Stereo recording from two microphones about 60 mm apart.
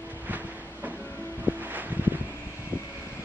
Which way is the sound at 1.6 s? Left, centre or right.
Right.